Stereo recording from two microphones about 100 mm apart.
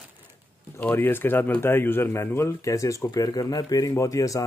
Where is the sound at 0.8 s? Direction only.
20° left (ahead or behind).